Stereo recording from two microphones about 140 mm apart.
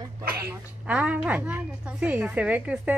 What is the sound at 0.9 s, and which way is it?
A woman's voice, 10° right (ahead or behind).